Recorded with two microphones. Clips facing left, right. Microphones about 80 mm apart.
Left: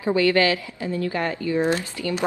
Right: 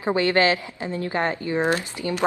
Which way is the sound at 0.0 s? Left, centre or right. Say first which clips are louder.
Left 1 dB; right.